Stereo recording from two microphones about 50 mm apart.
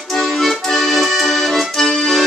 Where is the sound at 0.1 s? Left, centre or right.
Centre.